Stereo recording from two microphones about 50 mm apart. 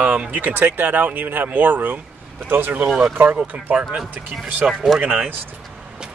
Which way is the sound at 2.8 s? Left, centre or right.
Centre.